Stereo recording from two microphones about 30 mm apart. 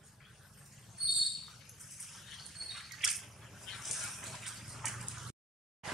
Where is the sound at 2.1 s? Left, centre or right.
Centre.